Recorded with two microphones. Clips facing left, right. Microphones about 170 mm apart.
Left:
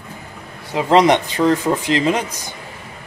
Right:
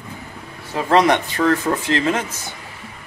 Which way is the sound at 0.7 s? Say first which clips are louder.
Left 2 dB; 20° left (ahead or behind).